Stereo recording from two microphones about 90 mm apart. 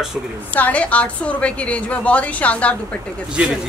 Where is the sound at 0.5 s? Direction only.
15° left (ahead or behind).